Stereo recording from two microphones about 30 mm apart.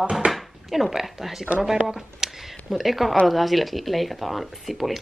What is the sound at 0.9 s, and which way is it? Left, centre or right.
Speech, centre.